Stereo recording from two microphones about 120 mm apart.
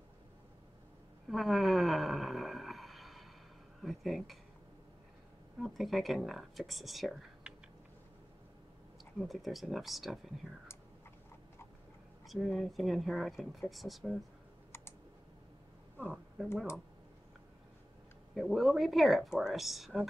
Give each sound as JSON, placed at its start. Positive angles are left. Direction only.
{"t": 1.3, "sound": "a sound", "side_deg": 0}
{"t": 3.8, "sound": "speech", "side_deg": 0}
{"t": 5.6, "sound": "speech", "side_deg": 0}
{"t": 9.2, "sound": "speech", "side_deg": 0}
{"t": 12.3, "sound": "speech", "side_deg": 0}
{"t": 16.0, "sound": "speech", "side_deg": -10}
{"t": 18.3, "sound": "speech", "side_deg": 0}